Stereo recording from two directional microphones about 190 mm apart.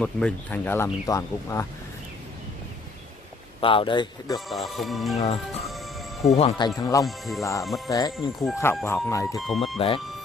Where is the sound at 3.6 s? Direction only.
25° left (ahead or behind).